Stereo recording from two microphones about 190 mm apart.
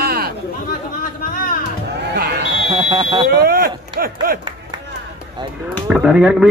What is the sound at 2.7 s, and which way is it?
Speech, 25° right (ahead or behind).